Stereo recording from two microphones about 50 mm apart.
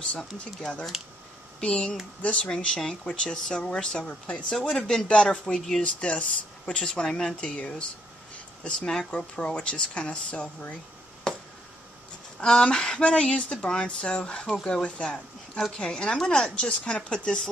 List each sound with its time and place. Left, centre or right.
0.2 s speech: centre
2.6 s speech: centre
11.3 s a sound: centre
12.4 s speech: centre